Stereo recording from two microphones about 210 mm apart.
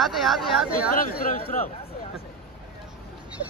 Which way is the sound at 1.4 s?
35° left (ahead or behind).